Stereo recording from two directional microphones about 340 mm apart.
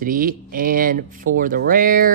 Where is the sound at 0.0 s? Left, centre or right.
Right.